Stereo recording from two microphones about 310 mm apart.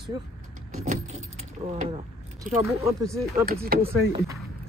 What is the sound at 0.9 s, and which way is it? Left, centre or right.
Speech, right.